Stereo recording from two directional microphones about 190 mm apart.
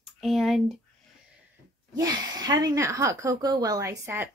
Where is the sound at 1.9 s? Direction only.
20° right (ahead or behind).